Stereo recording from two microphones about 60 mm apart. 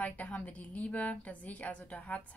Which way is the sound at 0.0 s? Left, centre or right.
Left.